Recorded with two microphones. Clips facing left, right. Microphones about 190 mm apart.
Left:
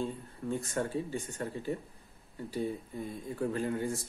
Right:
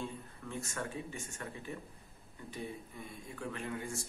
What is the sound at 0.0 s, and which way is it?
Speech, 35° left (ahead or behind).